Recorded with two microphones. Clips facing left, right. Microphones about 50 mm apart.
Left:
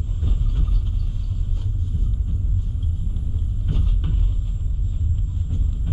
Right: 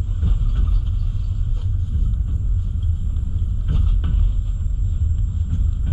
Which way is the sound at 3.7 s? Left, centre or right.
Centre.